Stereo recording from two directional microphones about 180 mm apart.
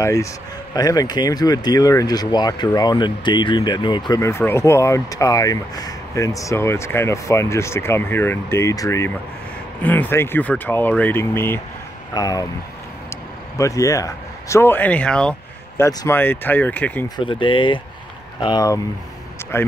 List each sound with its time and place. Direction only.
0.0 s speech: 15° left (ahead or behind)
13.6 s speech: 15° left (ahead or behind)
15.8 s speech: 15° left (ahead or behind)
17.2 s speech: 30° left (ahead or behind)